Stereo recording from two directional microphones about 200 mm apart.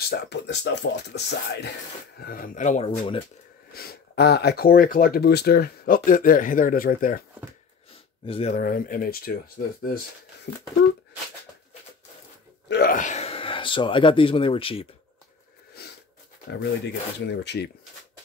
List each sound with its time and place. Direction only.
0.0 s speech: 55° left (ahead or behind)
2.1 s speech: 45° left (ahead or behind)
3.7 s speech: 50° left (ahead or behind)
8.3 s speech: 30° left (ahead or behind)
8.5 s speech: 45° left (ahead or behind)
12.6 s speech: 50° left (ahead or behind); by 14.9 s 25° left (ahead or behind)
15.8 s a sound: 55° left (ahead or behind)
16.5 s speech: 60° left (ahead or behind)